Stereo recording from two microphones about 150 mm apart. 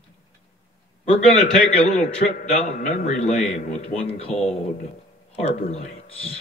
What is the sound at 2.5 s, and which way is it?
A man's voice, 55° left (ahead or behind).